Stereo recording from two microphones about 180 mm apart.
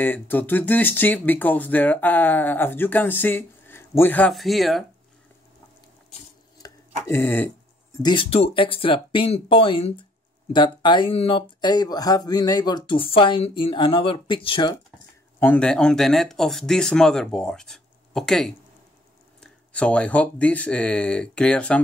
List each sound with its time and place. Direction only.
0.0 s speech: 10° left (ahead or behind)
6.6 s a sound: 15° left (ahead or behind)
8.0 s speech: 25° left (ahead or behind)
15.3 s speech: 10° left (ahead or behind)